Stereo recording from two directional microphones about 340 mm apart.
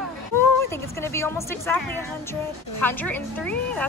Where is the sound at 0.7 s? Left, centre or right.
Centre.